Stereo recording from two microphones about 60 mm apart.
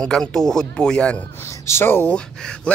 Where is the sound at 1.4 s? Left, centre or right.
Left.